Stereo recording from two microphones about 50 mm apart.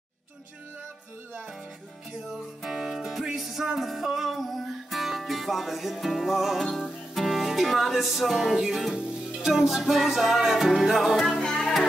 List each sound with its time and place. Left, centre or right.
2.6 s music: centre
11.3 s music: centre